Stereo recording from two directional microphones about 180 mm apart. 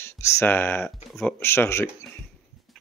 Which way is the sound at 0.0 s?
15° left (ahead or behind).